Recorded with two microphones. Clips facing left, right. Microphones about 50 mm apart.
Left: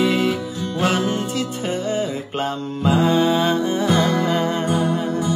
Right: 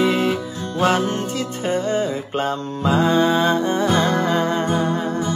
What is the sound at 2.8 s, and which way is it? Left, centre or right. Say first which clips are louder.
Music: even; right.